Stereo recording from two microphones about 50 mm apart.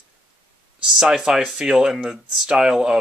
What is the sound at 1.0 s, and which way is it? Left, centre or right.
Speech, centre.